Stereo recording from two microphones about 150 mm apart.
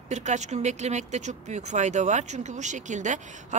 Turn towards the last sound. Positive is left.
turn(degrees=-55)  # may be behind; listen again after turning